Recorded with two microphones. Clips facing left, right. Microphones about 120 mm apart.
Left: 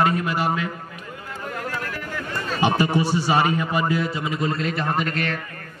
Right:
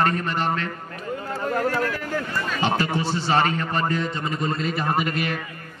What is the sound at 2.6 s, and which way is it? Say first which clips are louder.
A man's voice: left 4 dB; 15° left (ahead or behind).